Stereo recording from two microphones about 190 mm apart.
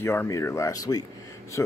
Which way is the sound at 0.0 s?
15° left (ahead or behind).